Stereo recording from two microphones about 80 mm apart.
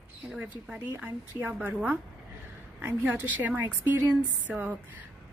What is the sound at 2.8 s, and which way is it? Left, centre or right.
A woman's voice, right.